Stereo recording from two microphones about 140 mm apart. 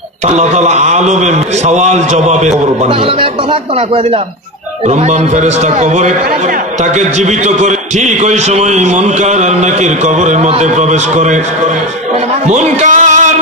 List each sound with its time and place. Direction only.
0.3 s a man's voice: 55° right (ahead or behind)
4.8 s a man's voice: 55° right (ahead or behind)
12.4 s music: 55° right (ahead or behind)